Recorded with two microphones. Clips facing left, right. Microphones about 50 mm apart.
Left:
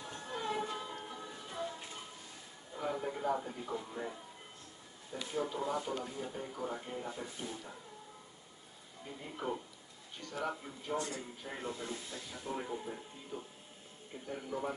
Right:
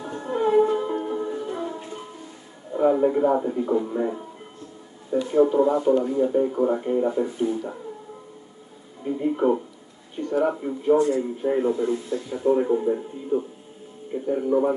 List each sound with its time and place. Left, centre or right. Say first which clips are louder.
0.0 s music: right 16 dB; right
2.7 s speech: right 19 dB; right
9.0 s speech: right 19 dB; right